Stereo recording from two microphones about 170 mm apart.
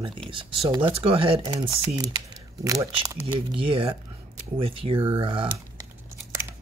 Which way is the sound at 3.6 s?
30° right (ahead or behind).